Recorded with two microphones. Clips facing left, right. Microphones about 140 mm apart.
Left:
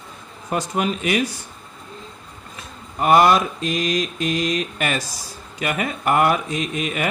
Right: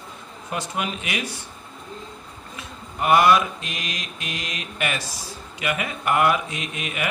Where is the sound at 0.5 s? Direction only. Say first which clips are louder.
Left 6 dB; 40° left (ahead or behind).